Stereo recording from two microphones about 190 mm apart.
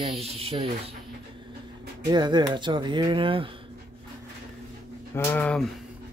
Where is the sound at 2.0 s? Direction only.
25° right (ahead or behind).